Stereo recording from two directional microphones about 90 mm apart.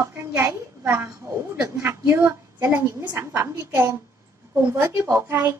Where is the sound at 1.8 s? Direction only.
30° right (ahead or behind).